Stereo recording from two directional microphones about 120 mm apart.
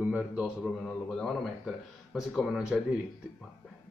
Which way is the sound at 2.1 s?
5° right (ahead or behind).